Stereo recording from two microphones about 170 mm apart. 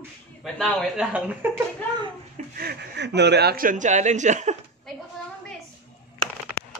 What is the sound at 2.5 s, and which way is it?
Speech, 80° right.